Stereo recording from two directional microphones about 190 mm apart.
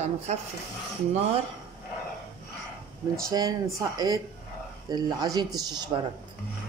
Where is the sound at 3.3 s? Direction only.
20° right (ahead or behind).